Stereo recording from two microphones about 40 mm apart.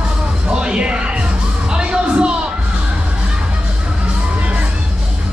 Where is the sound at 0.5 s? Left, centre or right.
Right.